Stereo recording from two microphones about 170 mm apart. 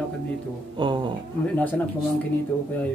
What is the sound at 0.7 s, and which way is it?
Speech, 30° right (ahead or behind).